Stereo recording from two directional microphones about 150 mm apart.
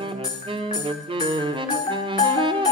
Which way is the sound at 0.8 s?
35° right (ahead or behind).